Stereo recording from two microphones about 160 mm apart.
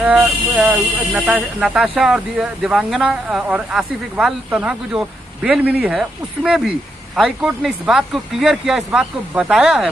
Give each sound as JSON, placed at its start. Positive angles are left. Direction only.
{"t": 0.0, "sound": "speech", "side_deg": -10}